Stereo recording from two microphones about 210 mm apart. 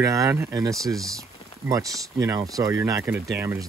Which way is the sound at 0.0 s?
15° right (ahead or behind).